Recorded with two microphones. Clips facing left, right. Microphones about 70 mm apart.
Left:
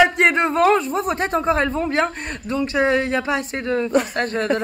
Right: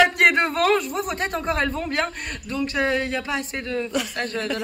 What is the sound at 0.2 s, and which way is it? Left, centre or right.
Speech, left.